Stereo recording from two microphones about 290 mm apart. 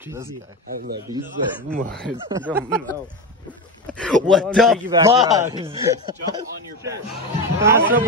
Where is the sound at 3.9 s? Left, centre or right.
Centre.